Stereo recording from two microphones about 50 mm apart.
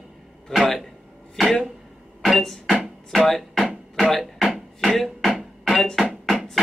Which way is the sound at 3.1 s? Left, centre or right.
Centre.